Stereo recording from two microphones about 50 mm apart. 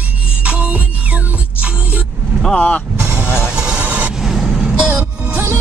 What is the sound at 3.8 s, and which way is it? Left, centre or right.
Vehicle, right.